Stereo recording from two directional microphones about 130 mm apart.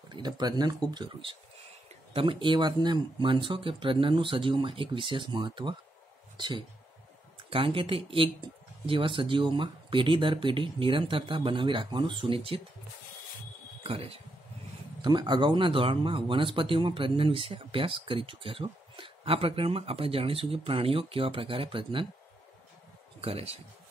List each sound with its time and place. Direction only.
0.1 s speech: 30° right (ahead or behind)
13.8 s speech: 45° right (ahead or behind)
15.0 s speech: 35° right (ahead or behind)
23.2 s speech: 50° right (ahead or behind)